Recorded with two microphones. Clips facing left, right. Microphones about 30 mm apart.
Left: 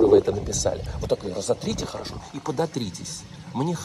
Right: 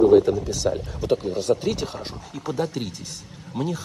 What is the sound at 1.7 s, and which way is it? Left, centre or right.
Speech, right.